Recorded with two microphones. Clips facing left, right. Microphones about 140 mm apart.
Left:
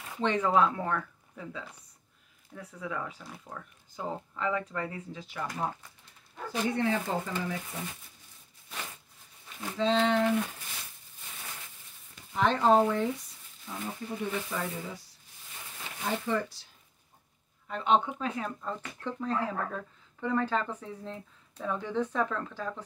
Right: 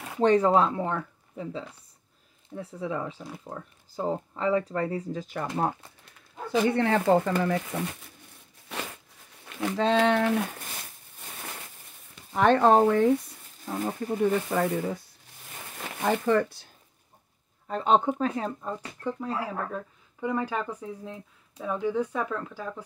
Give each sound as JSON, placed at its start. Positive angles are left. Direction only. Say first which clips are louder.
{"t": 0.2, "sound": "speech", "louder": "right 5 dB", "side_deg": -35}
{"t": 6.7, "sound": "speech", "louder": "right 7 dB", "side_deg": -70}
{"t": 9.5, "sound": "speech", "louder": "right 4 dB", "side_deg": -80}
{"t": 12.4, "sound": "speech", "louder": "right 4 dB", "side_deg": -60}
{"t": 16.0, "sound": "speech", "louder": "right 7 dB", "side_deg": -65}
{"t": 17.6, "sound": "speech", "louder": "right 4 dB", "side_deg": -40}
{"t": 19.0, "sound": "speech", "louder": "right 1 dB", "side_deg": -10}